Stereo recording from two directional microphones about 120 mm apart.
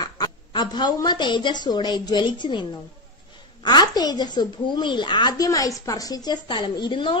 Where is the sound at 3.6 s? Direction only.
35° left (ahead or behind).